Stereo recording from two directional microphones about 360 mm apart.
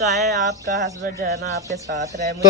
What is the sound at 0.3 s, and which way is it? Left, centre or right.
Speech, right.